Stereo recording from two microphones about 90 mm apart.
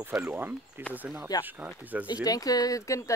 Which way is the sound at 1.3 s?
50° left (ahead or behind).